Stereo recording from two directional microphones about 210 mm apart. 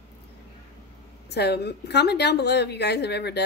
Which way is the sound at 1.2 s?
50° left (ahead or behind).